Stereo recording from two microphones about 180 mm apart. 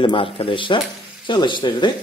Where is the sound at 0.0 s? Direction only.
30° left (ahead or behind).